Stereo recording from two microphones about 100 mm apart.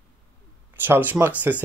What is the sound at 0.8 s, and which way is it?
Speech, 20° right (ahead or behind).